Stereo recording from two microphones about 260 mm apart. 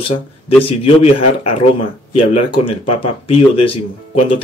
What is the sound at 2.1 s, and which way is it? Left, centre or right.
Speech, left.